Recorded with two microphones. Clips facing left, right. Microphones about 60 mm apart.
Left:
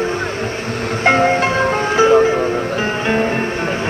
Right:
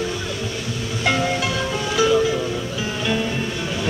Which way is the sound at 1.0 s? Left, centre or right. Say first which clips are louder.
Left 8 dB; left.